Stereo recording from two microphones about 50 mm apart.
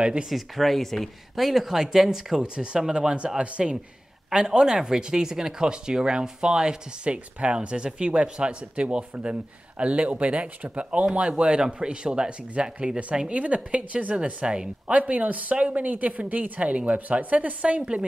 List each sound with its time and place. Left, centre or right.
0.0 s speech: right
0.3 s speech: centre
15.0 s speech: right